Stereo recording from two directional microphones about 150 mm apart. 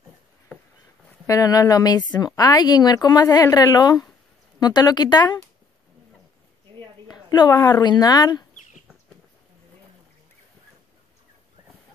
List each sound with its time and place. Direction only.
1.2 s a woman's voice: 25° left (ahead or behind)
7.1 s speech: 25° left (ahead or behind)